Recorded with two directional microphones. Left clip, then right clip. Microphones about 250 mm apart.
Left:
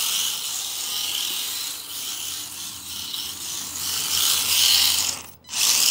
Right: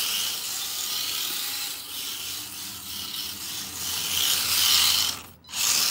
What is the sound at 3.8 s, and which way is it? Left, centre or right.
Mechanisms, centre.